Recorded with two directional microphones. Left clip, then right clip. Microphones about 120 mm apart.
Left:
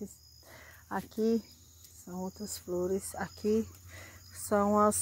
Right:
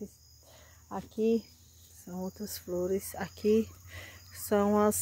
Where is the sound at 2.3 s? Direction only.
20° right (ahead or behind).